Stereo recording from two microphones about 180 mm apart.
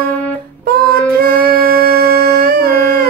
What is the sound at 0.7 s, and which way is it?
Child singing, 55° right (ahead or behind).